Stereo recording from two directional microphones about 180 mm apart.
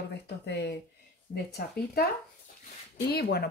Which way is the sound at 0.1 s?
70° left (ahead or behind).